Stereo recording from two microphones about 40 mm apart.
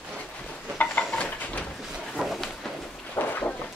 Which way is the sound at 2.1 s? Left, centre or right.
Centre.